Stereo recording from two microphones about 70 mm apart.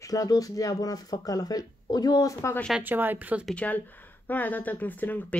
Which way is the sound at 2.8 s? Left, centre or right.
Right.